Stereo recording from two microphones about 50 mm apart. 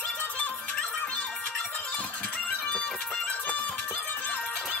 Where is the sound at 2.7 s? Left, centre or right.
Left.